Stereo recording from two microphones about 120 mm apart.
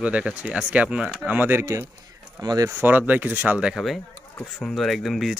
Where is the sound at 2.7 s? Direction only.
15° right (ahead or behind).